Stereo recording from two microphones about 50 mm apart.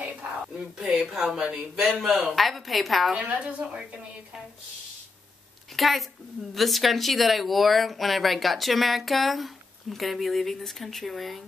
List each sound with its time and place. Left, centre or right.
0.7 s speech: centre
3.2 s a woman's voice: right
5.8 s speech: centre